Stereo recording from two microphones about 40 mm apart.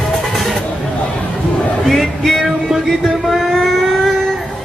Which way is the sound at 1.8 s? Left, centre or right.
Centre.